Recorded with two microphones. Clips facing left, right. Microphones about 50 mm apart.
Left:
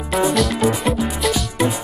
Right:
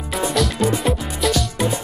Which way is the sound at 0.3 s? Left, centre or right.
Centre.